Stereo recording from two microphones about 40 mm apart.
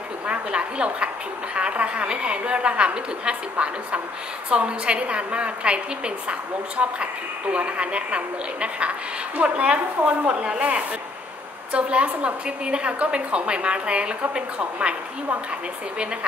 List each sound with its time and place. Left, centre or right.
0.3 s a woman's voice: right